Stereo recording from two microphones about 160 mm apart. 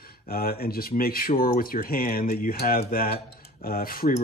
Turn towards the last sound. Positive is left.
turn(degrees=65)  # may be behind; listen again after turning